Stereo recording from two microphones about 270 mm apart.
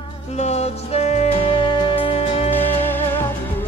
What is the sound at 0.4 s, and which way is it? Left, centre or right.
Music, left.